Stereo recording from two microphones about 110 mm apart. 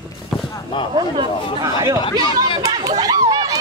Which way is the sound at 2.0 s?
50° left (ahead or behind).